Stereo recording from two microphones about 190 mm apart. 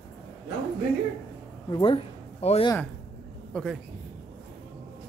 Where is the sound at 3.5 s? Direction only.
5° left (ahead or behind).